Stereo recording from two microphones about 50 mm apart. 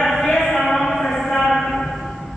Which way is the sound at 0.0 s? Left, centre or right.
Centre.